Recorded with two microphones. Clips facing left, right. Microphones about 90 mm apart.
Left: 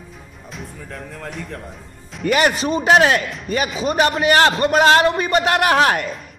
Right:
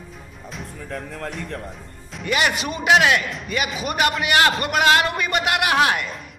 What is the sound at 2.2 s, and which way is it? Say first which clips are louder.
A man's voice: left 5 dB; 40° left (ahead or behind).